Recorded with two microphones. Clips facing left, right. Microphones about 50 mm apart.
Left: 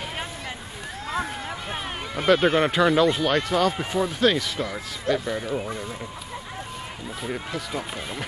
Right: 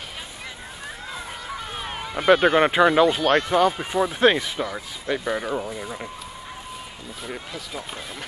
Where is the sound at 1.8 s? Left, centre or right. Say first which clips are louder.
Right 1 dB; centre.